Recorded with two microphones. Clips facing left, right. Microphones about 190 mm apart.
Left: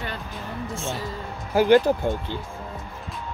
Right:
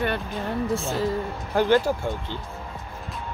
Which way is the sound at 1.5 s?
15° left (ahead or behind).